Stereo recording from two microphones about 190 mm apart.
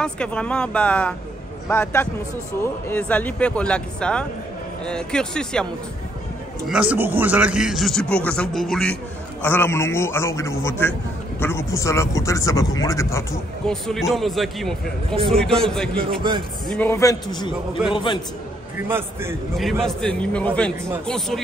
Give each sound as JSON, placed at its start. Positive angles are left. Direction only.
{"t": 0.0, "sound": "a man's voice", "side_deg": 5}
{"t": 6.7, "sound": "a man's voice", "side_deg": -10}
{"t": 13.7, "sound": "speech", "side_deg": 0}
{"t": 16.3, "sound": "speech", "side_deg": -25}
{"t": 16.7, "sound": "a man's voice", "side_deg": 10}
{"t": 18.8, "sound": "a man's voice", "side_deg": -10}
{"t": 19.5, "sound": "speech", "side_deg": 0}